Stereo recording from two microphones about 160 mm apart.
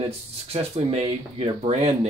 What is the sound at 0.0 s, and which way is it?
Speech, 40° right (ahead or behind).